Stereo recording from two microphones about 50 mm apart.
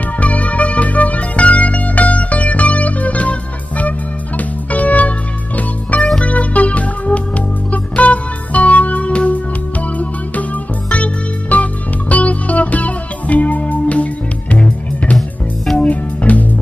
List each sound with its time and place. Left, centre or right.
0.2 s music: left
15.1 s music: centre
15.8 s music: left